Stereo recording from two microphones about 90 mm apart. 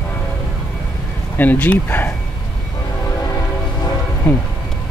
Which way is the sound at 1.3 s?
20° left (ahead or behind).